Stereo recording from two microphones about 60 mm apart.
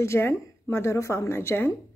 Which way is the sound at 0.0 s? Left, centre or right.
Left.